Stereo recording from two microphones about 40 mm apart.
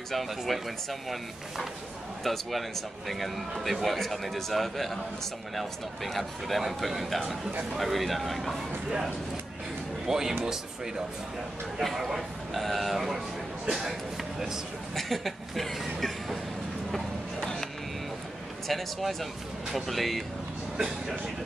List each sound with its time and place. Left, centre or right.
0.1 s a man's voice: centre
2.2 s a man's voice: centre
10.0 s speech: centre
11.8 s a man's voice: centre
13.7 s a sound: centre
15.0 s a man's voice: centre
16.9 s a sound: centre
18.7 s a man's voice: centre
20.7 s speech: right